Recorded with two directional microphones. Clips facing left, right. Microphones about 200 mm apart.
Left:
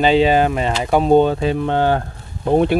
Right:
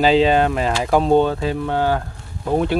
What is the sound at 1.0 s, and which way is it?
Speech, 15° left (ahead or behind).